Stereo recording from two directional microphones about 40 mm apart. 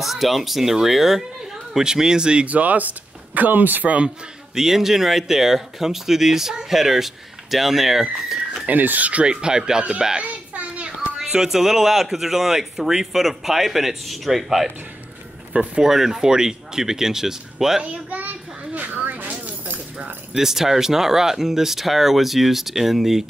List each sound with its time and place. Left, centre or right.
0.0 s speech: centre
1.8 s speech: centre
2.4 s speech: right
4.6 s speech: centre
8.6 s speech: right
9.2 s speech: right
10.2 s a sound: right
11.1 s speech: centre
15.5 s speech: right
15.8 s speech: centre
18.1 s children playing: right
19.4 s a sound: right
20.3 s speech: centre